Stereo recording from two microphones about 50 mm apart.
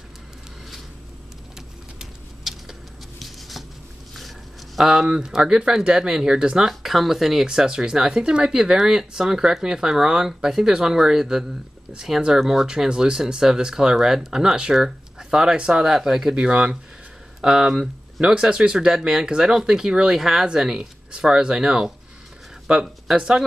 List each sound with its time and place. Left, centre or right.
2.4 s a sound: centre
3.2 s writing: centre
4.7 s speech: centre
6.7 s speech: centre
7.4 s speech: centre